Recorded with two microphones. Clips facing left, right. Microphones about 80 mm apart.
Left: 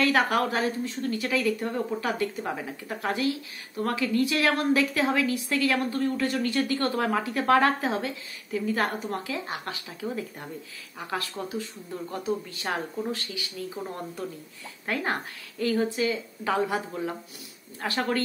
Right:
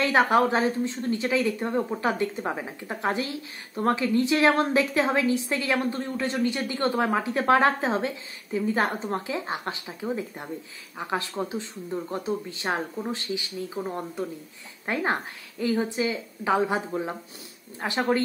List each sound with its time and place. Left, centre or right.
0.0 s speech: right